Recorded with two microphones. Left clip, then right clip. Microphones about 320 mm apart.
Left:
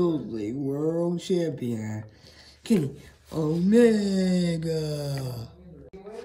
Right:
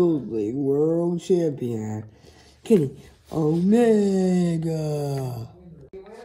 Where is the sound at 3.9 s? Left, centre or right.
Centre.